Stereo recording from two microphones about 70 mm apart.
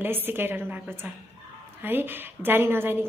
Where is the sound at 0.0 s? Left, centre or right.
Right.